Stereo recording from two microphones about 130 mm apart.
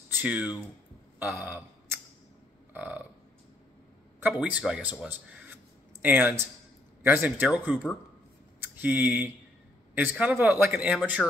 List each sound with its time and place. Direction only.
0.1 s speech: 10° right (ahead or behind)
2.7 s burping: 10° right (ahead or behind)
4.2 s a man's voice: 10° right (ahead or behind)
6.0 s a man's voice: 15° right (ahead or behind)